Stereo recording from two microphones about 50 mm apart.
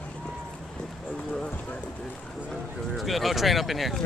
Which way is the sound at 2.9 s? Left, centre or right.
Centre.